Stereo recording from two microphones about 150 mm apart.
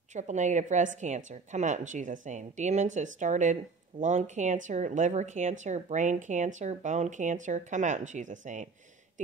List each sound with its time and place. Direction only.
0.1 s speech: 50° right (ahead or behind)